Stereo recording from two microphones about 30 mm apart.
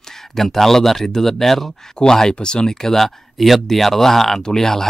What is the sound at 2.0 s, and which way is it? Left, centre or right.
Speech, left.